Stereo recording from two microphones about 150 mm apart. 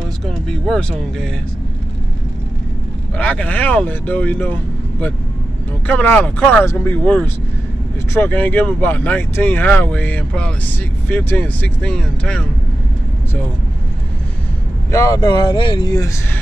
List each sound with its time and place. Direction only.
0.3 s speech: 5° left (ahead or behind)
3.2 s speech: 10° left (ahead or behind)
5.9 s speech: 10° left (ahead or behind)
14.9 s speech: 25° left (ahead or behind)